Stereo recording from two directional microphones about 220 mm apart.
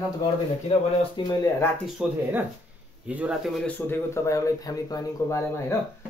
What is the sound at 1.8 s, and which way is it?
Speech, 5° right (ahead or behind).